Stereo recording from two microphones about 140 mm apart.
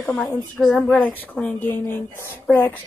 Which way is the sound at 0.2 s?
5° left (ahead or behind).